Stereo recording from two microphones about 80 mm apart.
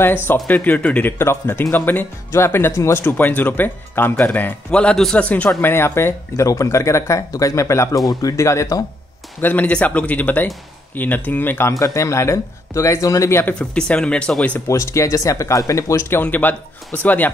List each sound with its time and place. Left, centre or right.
0.0 s speech: left; by 5.2 s centre
5.2 s speech: centre
5.6 s speech: left
9.4 s speech: left
11.8 s speech: left
13.6 s speech: centre
14.7 s speech: left
16.2 s speech: left